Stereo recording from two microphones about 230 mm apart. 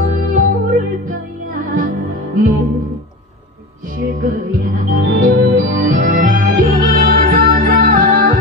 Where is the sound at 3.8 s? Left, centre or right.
Right.